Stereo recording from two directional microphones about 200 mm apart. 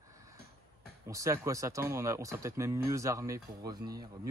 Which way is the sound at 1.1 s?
15° right (ahead or behind).